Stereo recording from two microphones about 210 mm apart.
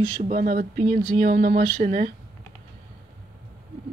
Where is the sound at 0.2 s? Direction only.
40° right (ahead or behind).